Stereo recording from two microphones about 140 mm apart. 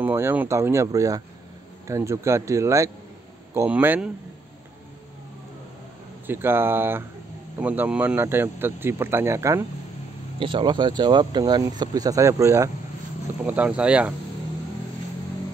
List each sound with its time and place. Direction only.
0.0 s speech: 15° right (ahead or behind)
6.2 s speech: 15° right (ahead or behind)
10.4 s speech: 35° right (ahead or behind)
13.4 s speech: 10° right (ahead or behind)